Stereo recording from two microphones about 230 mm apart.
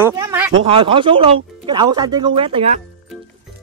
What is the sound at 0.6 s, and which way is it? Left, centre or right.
Speech, right.